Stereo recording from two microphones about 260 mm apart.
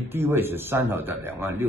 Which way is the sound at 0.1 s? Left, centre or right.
Centre.